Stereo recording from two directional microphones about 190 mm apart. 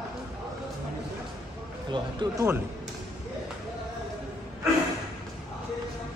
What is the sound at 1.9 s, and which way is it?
Speech, 25° right (ahead or behind).